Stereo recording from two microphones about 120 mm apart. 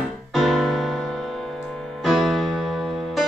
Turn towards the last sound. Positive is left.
turn(degrees=0)  # may be behind; listen again after turning